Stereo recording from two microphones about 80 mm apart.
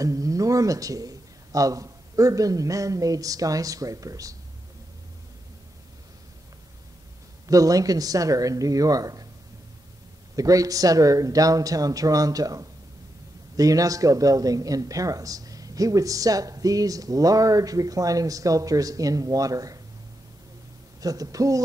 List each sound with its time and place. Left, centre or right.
0.0 s a man's voice: right
7.4 s a man's voice: right
10.3 s a man's voice: right
21.0 s a man's voice: right